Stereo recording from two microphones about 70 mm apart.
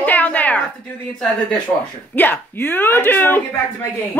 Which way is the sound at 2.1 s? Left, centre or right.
Left.